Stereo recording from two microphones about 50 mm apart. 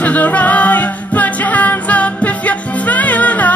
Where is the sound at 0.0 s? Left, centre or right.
Left.